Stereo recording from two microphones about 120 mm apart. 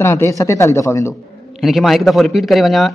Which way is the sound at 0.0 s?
20° left (ahead or behind).